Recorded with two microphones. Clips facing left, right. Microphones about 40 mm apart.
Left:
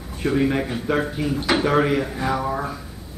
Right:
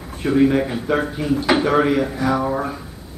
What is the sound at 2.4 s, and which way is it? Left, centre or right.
Speech, centre.